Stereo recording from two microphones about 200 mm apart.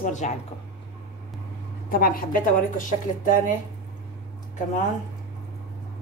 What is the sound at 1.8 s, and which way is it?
A woman's voice, 45° left (ahead or behind).